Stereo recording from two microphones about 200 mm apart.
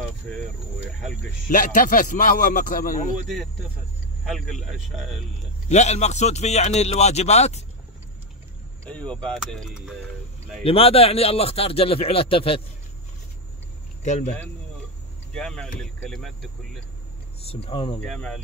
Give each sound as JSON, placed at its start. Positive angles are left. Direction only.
{"t": 1.5, "sound": "a man's voice", "side_deg": 45}
{"t": 4.2, "sound": "speech", "side_deg": 0}
{"t": 5.7, "sound": "speech", "side_deg": 35}
{"t": 8.8, "sound": "speech", "side_deg": 5}
{"t": 10.6, "sound": "speech", "side_deg": 30}
{"t": 14.0, "sound": "speech", "side_deg": 35}
{"t": 15.3, "sound": "speech", "side_deg": 5}
{"t": 17.4, "sound": "speech", "side_deg": 30}
{"t": 18.1, "sound": "speech", "side_deg": 5}